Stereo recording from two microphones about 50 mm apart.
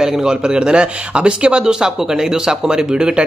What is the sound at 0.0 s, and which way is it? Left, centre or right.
A man's voice, centre.